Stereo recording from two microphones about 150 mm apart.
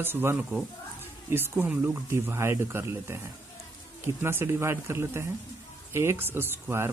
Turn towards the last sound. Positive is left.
turn(degrees=-15)  # may be behind; listen again after turning